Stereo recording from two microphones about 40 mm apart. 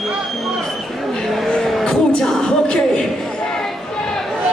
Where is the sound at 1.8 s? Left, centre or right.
Left.